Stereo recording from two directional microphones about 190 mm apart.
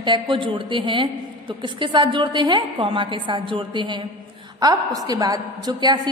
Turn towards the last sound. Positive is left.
turn(degrees=-20)  # may be behind; listen again after turning